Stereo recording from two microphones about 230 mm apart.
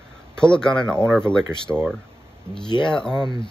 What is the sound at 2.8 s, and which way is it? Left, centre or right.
Speech, centre.